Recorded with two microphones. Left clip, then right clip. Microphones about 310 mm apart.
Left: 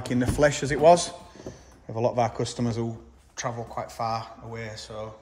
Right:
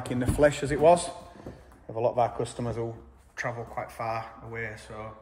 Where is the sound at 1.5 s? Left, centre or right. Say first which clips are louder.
Left 3 dB; centre.